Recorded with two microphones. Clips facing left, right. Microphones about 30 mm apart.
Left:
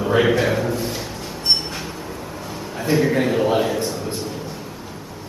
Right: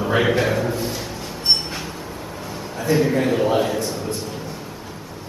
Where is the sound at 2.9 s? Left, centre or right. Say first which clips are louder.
Even; centre.